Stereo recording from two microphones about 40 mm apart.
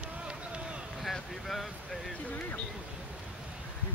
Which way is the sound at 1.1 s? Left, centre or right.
Centre.